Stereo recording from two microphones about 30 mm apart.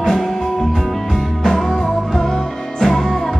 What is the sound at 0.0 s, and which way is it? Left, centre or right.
Music, centre.